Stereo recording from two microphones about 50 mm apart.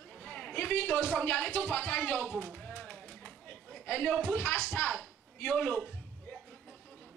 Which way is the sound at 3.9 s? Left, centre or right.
Left.